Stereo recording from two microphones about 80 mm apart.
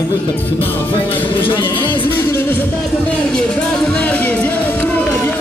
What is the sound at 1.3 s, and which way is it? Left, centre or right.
Speech, left.